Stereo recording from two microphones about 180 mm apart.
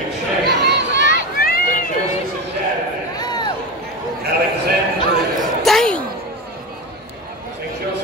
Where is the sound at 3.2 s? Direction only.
20° left (ahead or behind).